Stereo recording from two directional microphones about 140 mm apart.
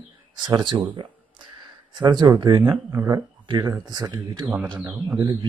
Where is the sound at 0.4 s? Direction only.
35° right (ahead or behind).